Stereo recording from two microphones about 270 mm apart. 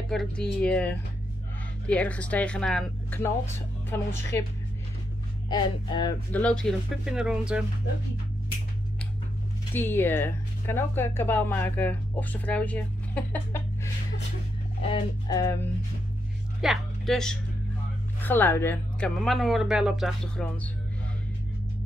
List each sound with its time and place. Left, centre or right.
0.1 s speech: centre
6.3 s speech: centre
9.8 s speech: centre
14.9 s speech: centre
16.6 s speech: centre